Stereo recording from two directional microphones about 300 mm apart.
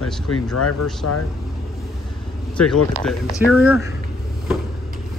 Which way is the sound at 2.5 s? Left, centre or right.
Centre.